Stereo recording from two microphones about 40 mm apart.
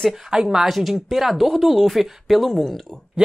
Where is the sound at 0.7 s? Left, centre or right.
Centre.